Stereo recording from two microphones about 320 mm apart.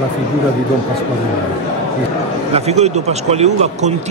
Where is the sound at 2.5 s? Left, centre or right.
Centre.